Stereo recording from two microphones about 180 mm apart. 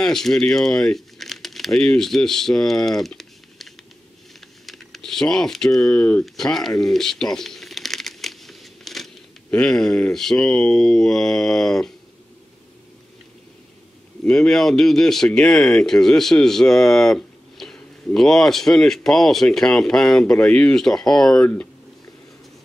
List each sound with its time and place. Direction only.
0.0 s speech: centre (ahead or behind)
14.2 s speech: 5° left (ahead or behind)